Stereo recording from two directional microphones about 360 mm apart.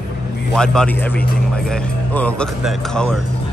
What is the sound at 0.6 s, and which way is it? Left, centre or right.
Speech, centre.